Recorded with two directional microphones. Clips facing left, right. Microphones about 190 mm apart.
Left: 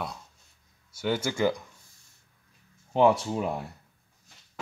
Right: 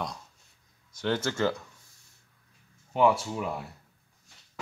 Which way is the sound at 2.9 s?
25° left (ahead or behind).